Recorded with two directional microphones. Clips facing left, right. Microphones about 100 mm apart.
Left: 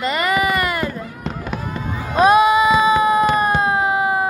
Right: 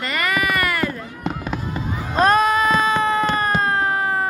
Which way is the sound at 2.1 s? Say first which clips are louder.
Left 4 dB; 10° left (ahead or behind).